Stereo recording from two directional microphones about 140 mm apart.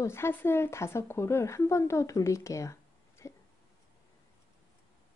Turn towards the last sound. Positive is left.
turn(degrees=20)  # may be behind; listen again after turning